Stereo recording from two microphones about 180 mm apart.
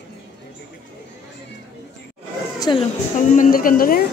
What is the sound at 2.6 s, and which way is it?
Speech, 25° left (ahead or behind).